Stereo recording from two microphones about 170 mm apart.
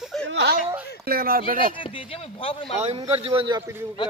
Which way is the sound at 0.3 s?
90° right.